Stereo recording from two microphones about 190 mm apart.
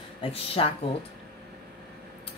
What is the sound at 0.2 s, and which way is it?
Speech, 30° left (ahead or behind).